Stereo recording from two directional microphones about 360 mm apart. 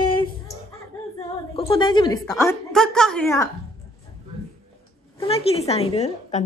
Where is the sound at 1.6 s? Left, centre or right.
Centre.